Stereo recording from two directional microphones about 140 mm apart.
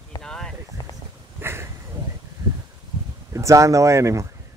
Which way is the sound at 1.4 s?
15° right (ahead or behind).